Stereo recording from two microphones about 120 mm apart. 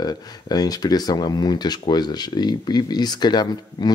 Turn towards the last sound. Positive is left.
turn(degrees=35)  # may be behind; listen again after turning